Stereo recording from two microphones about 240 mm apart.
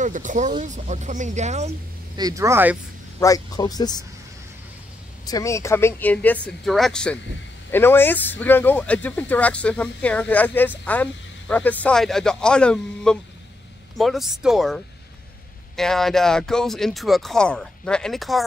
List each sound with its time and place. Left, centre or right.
0.0 s speech: right
2.1 s speech: centre
3.2 s speech: centre
5.2 s speech: centre